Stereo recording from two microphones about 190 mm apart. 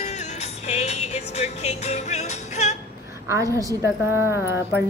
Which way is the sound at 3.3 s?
15° right (ahead or behind).